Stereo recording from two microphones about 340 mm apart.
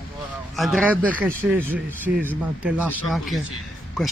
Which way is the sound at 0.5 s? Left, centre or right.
Centre.